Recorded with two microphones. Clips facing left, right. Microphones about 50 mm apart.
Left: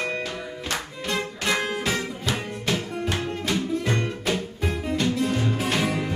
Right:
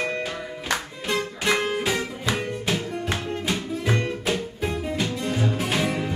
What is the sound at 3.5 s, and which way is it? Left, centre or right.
Music, centre.